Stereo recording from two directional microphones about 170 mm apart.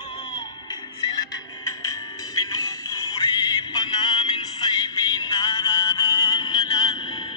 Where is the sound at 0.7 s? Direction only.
20° left (ahead or behind).